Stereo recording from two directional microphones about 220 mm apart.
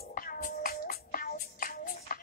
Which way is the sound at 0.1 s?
40° left (ahead or behind).